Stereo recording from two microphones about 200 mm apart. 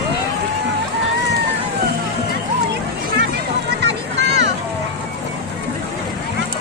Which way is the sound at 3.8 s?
60° right (ahead or behind).